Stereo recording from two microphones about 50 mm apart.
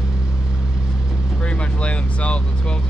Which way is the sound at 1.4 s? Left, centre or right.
Left.